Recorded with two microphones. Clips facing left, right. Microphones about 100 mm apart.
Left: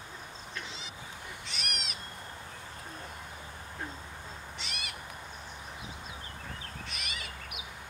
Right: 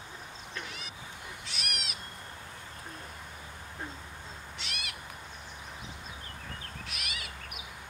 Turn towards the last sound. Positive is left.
turn(degrees=-5)  # may be behind; listen again after turning